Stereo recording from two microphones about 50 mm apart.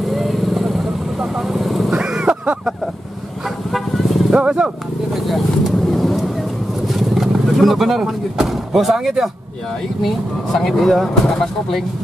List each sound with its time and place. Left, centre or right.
0.1 s vehicle: centre
2.0 s a sound: centre
3.4 s vehicle: centre
4.3 s a sound: centre
5.1 s vehicle: centre
6.9 s speech: centre
10.0 s speech: centre